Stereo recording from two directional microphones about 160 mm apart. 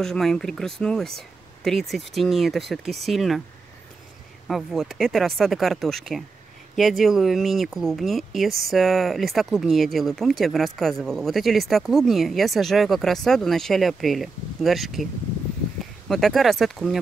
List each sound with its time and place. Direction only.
0.0 s speech: 5° left (ahead or behind)
4.5 s speech: centre (ahead or behind)
16.1 s speech: centre (ahead or behind)